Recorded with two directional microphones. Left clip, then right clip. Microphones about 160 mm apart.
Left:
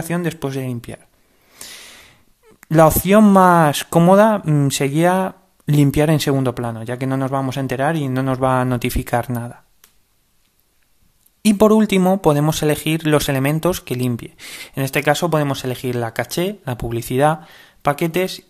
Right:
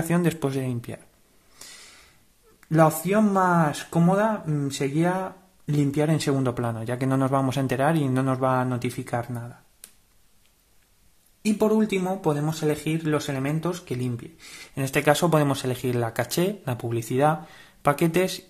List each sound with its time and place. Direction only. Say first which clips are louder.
0.1 s speech: left 3 dB; 10° left (ahead or behind)
1.6 s snort: left 8 dB; 30° left (ahead or behind)
2.6 s speech: left 8 dB; 35° left (ahead or behind)
11.4 s speech: left 9 dB; 45° left (ahead or behind); by 18.4 s 10° left (ahead or behind)